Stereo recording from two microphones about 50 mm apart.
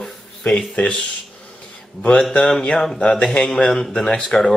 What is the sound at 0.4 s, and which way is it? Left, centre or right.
Speech, left.